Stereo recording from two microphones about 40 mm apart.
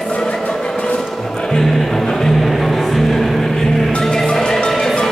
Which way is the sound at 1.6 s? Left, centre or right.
Centre.